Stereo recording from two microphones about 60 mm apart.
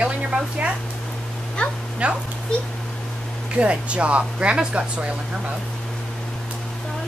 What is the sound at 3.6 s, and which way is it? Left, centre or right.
Speech, centre.